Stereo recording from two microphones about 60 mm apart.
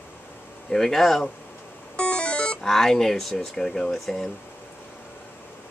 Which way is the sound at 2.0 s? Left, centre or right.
Centre.